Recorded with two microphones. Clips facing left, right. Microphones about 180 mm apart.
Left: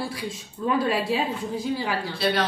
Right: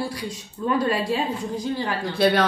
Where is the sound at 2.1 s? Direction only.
55° right (ahead or behind).